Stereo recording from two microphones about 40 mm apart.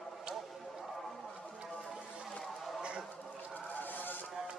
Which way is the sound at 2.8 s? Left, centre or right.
Right.